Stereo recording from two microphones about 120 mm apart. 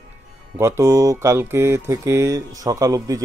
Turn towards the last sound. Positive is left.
turn(degrees=-30)  # may be behind; listen again after turning